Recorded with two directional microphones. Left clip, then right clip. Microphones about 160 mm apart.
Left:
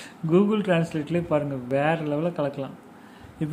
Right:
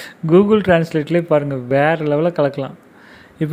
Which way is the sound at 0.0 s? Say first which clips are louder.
Right 9 dB; 40° right (ahead or behind).